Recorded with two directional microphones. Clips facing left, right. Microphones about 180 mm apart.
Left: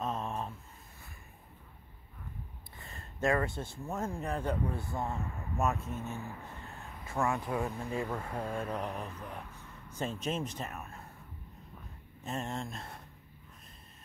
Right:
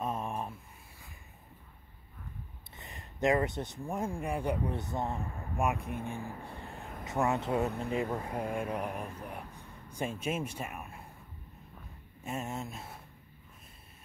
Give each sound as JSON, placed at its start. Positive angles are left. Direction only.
{"t": 0.0, "sound": "a sound", "side_deg": -10}
{"t": 2.8, "sound": "speech", "side_deg": -15}
{"t": 12.2, "sound": "speech", "side_deg": -10}